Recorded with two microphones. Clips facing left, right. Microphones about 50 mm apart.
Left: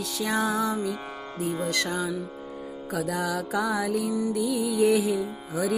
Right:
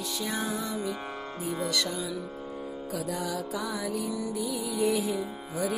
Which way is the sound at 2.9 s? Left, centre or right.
Left.